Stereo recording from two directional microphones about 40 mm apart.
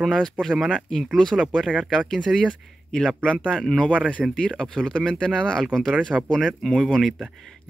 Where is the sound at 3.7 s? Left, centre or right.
Left.